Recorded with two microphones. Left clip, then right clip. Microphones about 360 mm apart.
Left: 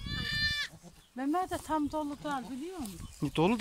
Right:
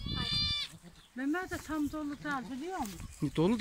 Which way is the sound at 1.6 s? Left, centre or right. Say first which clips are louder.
Left 4 dB; centre.